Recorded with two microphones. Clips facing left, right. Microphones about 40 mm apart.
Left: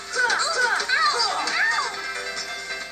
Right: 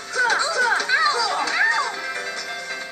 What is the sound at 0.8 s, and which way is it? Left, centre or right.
Chatter, right.